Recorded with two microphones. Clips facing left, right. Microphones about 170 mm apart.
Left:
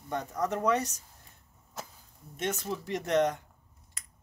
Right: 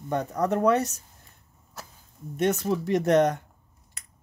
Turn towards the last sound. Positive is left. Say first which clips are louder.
# right 6 dB
turn(degrees=-65)  # may be behind; listen again after turning